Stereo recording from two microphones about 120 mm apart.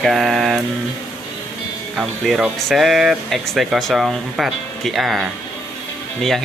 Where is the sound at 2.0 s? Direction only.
5° right (ahead or behind).